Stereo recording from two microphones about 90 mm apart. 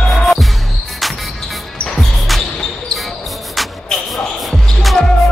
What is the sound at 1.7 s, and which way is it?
Basketball bounce, 5° left (ahead or behind).